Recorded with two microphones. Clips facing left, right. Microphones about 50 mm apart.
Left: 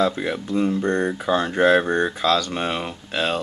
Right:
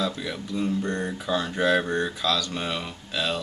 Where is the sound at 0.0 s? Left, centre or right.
Left.